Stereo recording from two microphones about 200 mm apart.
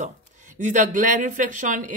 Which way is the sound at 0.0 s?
40° right (ahead or behind).